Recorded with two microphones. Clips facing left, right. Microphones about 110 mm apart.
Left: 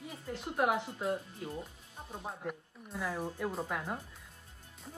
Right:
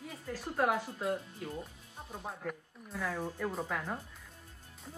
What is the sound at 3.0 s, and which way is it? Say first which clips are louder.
Speech: even; 15° left (ahead or behind).